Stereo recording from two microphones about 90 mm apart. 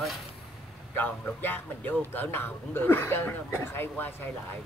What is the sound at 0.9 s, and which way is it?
Speech, 20° left (ahead or behind).